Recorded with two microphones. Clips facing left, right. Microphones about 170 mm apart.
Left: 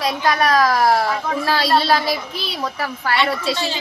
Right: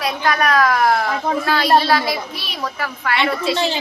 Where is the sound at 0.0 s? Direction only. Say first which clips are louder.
Left 1 dB; 30° left (ahead or behind).